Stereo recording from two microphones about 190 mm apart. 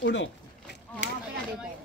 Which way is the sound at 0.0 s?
75° left (ahead or behind).